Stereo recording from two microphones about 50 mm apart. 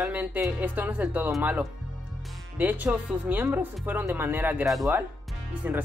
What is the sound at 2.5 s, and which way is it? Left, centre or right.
Speech, right.